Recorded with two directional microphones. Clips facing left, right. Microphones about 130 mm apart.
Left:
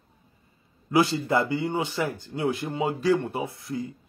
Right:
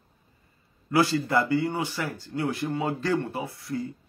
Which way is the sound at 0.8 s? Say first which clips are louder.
Left 1 dB; 20° left (ahead or behind).